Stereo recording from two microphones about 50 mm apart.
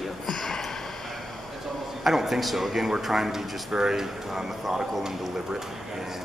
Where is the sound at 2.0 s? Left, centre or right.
Centre.